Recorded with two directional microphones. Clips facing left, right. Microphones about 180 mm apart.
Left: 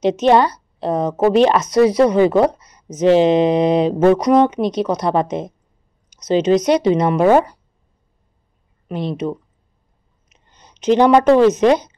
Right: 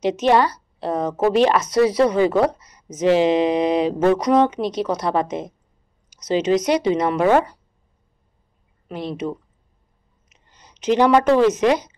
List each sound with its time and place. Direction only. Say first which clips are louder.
0.0 s a woman's voice: left 3 dB; 20° left (ahead or behind)
6.5 s a woman's voice: left 4 dB; 20° left (ahead or behind)
8.8 s a woman's voice: left 4 dB; 20° left (ahead or behind)
10.5 s a sound: left 3 dB; 20° left (ahead or behind)
11.0 s a woman's voice: left 4 dB; 20° left (ahead or behind)